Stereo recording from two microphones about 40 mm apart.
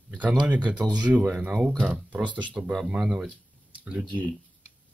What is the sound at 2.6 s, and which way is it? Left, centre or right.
Speech, right.